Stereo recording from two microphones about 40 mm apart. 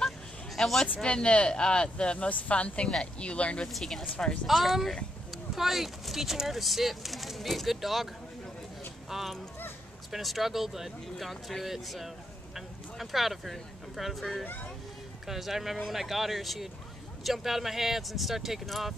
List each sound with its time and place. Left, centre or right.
0.6 s speech: centre
1.0 s speech: left
2.1 s speech: left
3.8 s speech: centre
4.5 s speech: centre
9.1 s speech: centre